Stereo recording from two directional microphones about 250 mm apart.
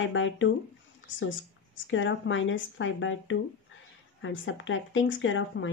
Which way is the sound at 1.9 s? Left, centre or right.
Left.